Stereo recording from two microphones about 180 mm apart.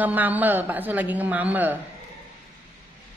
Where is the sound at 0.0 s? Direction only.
10° right (ahead or behind).